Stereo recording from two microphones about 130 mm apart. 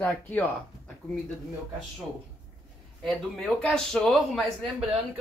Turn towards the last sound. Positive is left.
turn(degrees=0)  # may be behind; listen again after turning